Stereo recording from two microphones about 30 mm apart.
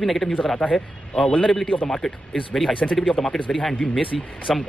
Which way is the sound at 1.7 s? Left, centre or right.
Left.